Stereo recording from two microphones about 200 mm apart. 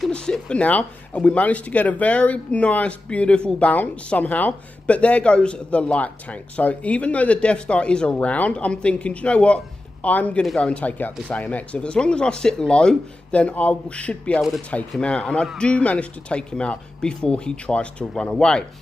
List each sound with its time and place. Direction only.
0.0 s speech: 5° left (ahead or behind)